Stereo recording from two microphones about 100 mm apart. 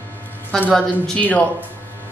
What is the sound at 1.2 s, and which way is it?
Speech, 15° left (ahead or behind).